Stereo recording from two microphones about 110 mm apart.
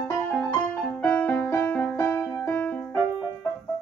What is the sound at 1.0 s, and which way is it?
Music, 15° left (ahead or behind).